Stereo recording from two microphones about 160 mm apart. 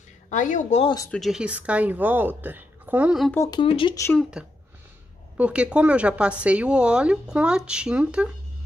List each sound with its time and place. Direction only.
0.3 s speech: 50° left (ahead or behind)
0.8 s speech: 20° left (ahead or behind)
1.1 s a woman's voice: centre (ahead or behind)
3.3 s speech: 25° left (ahead or behind)
3.9 s speech: 15° left (ahead or behind)
4.2 s a woman's voice: 5° right (ahead or behind)